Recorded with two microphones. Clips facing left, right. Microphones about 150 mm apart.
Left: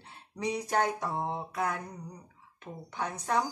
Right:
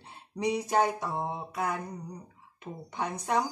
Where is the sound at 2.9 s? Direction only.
15° right (ahead or behind).